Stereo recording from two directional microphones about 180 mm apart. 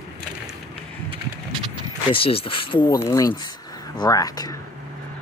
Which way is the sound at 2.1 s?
30° left (ahead or behind).